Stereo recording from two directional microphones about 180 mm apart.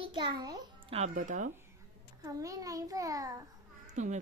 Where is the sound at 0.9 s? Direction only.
40° right (ahead or behind).